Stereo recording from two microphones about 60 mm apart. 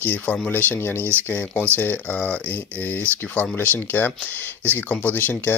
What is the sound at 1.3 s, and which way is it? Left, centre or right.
Speech, left.